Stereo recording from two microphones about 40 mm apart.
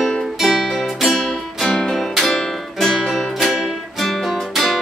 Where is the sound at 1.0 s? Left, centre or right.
Centre.